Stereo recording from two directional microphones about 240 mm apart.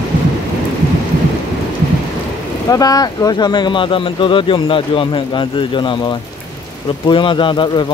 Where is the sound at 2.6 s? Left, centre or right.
Centre.